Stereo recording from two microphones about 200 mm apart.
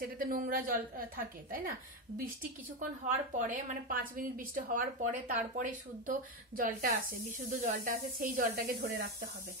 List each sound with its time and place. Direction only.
0.0 s speech: 45° right (ahead or behind)
2.8 s a woman's voice: 40° right (ahead or behind)